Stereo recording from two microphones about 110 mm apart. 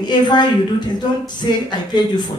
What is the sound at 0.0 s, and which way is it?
A woman's voice, 40° left (ahead or behind).